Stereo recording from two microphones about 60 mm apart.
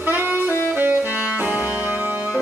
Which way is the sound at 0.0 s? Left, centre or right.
Right.